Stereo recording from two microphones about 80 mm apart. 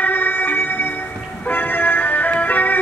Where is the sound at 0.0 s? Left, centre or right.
Left.